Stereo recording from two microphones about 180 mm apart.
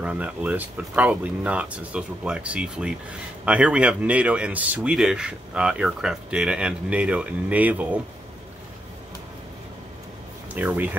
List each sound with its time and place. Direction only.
0.0 s speech: 10° right (ahead or behind)
10.5 s speech: 10° right (ahead or behind)